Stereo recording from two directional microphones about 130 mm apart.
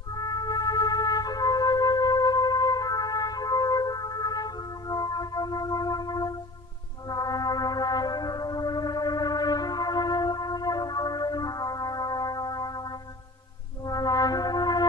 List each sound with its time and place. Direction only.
0.1 s music: 30° left (ahead or behind)
13.8 s music: 30° left (ahead or behind)